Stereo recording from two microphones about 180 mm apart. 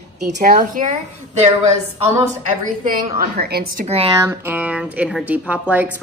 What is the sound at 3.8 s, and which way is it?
Speech, 35° right (ahead or behind).